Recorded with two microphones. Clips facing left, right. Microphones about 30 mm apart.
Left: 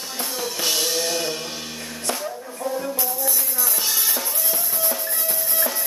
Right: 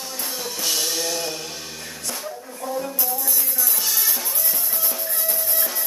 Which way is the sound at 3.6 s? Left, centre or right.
Centre.